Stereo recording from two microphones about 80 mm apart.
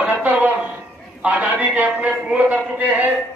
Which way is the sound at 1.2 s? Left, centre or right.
Centre.